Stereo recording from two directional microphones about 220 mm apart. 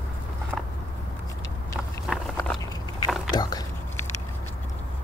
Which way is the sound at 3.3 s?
20° left (ahead or behind).